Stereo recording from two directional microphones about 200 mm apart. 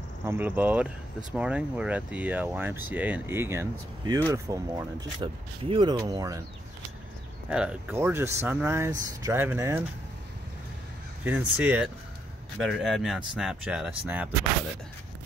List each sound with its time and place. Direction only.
0.2 s speech: 10° right (ahead or behind)
7.4 s speech: 5° right (ahead or behind)
11.2 s speech: 5° right (ahead or behind)